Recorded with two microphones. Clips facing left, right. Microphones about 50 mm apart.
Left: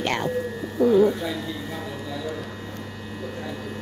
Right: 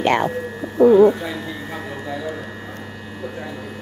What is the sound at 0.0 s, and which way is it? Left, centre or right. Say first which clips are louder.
Speech: right 6 dB; centre.